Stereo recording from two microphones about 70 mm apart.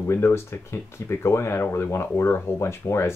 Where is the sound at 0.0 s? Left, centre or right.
Left.